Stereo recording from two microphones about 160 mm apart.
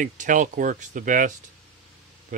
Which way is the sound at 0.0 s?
50° right (ahead or behind).